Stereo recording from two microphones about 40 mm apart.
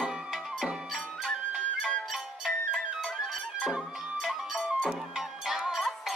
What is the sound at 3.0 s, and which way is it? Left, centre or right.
Music, centre.